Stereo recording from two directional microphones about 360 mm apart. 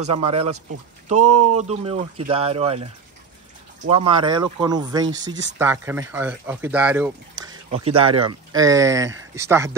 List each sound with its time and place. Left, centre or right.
0.0 s speech: centre
1.2 s speech: right
1.6 s speech: centre
3.9 s speech: centre
7.9 s speech: right
8.2 s speech: centre